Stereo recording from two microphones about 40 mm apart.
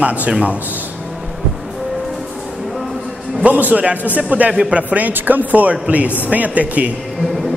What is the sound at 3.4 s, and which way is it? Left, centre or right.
A man's voice, right.